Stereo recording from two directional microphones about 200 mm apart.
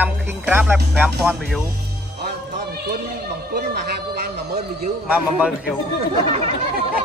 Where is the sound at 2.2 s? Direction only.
50° right (ahead or behind).